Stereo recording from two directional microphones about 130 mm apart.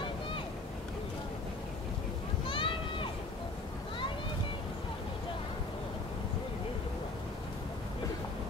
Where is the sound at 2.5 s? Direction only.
40° left (ahead or behind).